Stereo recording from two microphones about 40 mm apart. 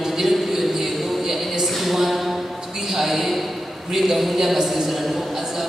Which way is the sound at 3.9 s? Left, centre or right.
Centre.